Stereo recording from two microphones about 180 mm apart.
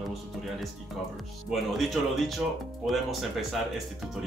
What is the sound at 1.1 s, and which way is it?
Speech, centre (ahead or behind).